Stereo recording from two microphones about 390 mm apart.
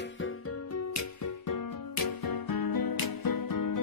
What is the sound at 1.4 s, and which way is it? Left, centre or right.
Music, left.